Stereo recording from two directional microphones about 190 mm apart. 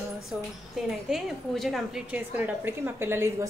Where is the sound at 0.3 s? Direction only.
Centre (ahead or behind).